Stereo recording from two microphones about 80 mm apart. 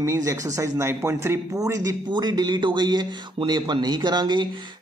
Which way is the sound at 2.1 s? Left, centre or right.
Right.